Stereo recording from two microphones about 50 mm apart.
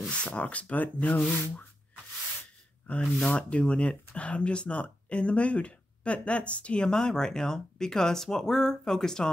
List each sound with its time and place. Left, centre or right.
0.1 s speech: left
1.3 s sanding: left
3.0 s speech: centre
3.3 s speech: left